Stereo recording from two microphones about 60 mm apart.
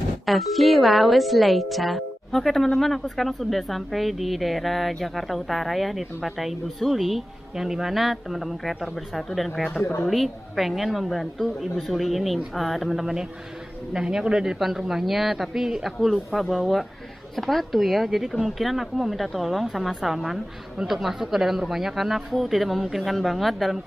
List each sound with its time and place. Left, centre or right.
0.2 s a woman's voice: centre